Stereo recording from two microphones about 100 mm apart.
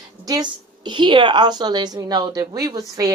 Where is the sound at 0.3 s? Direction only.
50° right (ahead or behind).